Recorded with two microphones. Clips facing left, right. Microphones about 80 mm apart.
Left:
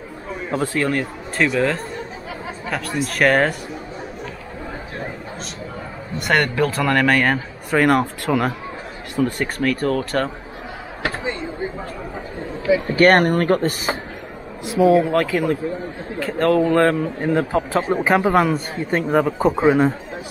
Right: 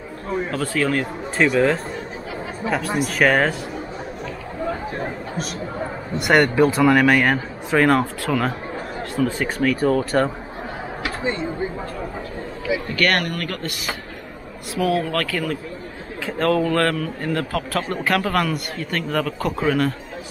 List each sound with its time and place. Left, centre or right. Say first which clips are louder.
0.5 s speech: left 3 dB; centre
3.0 s speech: left 2 dB; centre
6.2 s speech: right 3 dB; centre
8.0 s a man's voice: left 2 dB; centre
9.1 s speech: left 1 dB; centre
12.8 s speech: left 8 dB; left
14.8 s a man's voice: left 6 dB; centre
16.2 s a man's voice: left 3 dB; centre; by 20.0 s left